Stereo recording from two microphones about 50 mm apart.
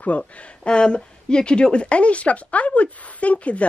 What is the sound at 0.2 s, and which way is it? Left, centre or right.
A woman's voice, centre.